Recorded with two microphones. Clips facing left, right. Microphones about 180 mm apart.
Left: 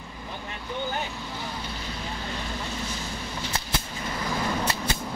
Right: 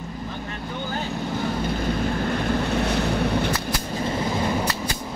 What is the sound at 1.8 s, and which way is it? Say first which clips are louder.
Boat: right 11 dB; 55° right (ahead or behind).